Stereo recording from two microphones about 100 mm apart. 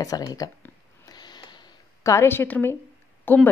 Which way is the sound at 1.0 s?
45° left (ahead or behind).